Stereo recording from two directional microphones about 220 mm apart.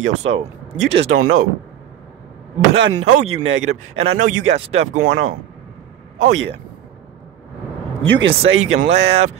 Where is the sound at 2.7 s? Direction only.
60° right (ahead or behind).